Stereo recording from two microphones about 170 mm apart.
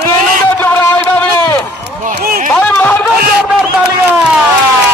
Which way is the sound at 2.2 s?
60° right (ahead or behind).